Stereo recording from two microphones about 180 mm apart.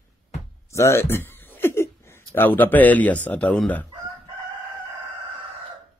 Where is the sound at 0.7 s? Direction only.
15° left (ahead or behind).